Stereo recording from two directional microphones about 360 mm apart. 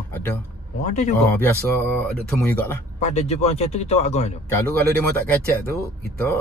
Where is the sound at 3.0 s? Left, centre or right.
Centre.